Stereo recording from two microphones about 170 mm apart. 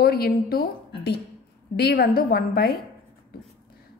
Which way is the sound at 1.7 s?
70° left (ahead or behind).